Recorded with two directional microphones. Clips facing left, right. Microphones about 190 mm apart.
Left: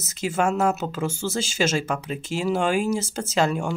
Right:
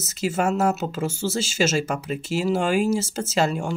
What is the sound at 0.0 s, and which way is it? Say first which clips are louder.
Speech: even; 5° right (ahead or behind).